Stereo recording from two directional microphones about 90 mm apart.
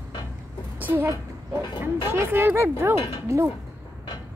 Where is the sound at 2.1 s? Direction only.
25° right (ahead or behind).